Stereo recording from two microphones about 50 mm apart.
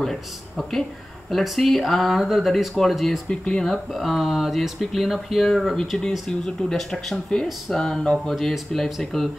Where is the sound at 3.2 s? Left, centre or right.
Left.